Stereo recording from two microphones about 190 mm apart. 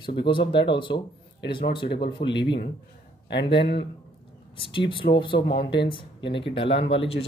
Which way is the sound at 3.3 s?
60° left (ahead or behind).